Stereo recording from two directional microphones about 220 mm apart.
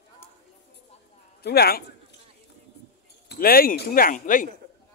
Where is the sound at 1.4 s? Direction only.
45° left (ahead or behind).